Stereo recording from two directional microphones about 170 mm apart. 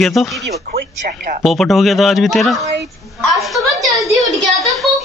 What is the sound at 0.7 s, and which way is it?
Speech, 60° right (ahead or behind).